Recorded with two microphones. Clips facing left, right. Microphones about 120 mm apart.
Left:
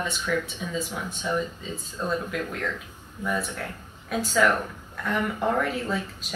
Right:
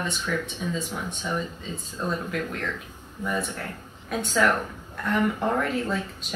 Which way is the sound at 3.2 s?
Centre (ahead or behind).